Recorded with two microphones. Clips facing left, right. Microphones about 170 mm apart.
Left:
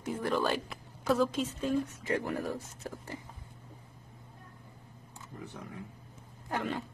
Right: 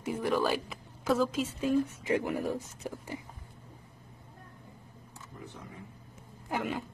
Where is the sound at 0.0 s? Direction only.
10° right (ahead or behind).